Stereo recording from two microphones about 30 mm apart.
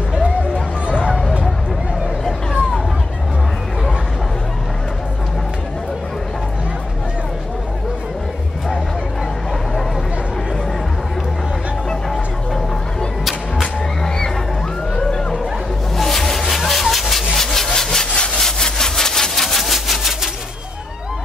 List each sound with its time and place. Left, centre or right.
13.2 s music: centre
14.0 s music: left
16.0 s rub: centre
18.1 s sawing: left
18.4 s sawing: centre
18.9 s a sound: centre
19.6 s a sound: centre